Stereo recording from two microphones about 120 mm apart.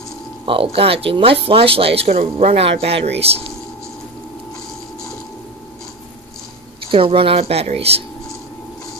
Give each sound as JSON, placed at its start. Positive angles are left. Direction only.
{"t": 0.5, "sound": "speech", "side_deg": -50}
{"t": 6.9, "sound": "speech", "side_deg": -50}